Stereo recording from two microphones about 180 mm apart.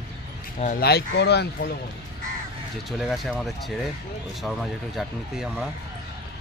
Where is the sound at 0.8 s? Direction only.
65° left (ahead or behind).